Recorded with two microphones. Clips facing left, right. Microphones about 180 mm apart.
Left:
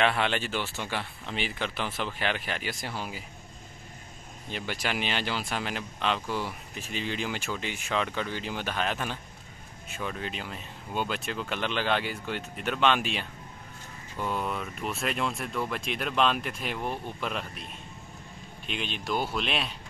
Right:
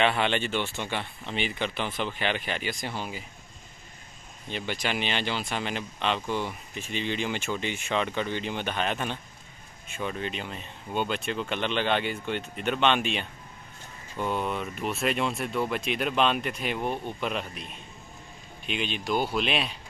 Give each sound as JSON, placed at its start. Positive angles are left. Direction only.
{"t": 0.0, "sound": "speech", "side_deg": 0}
{"t": 4.5, "sound": "speech", "side_deg": 5}
{"t": 18.7, "sound": "speech", "side_deg": 0}